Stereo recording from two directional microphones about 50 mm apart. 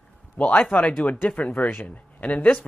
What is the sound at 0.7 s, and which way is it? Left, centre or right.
Speech, left.